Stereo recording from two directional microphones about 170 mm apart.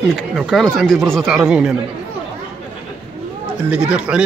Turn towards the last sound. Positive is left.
turn(degrees=-5)  # may be behind; listen again after turning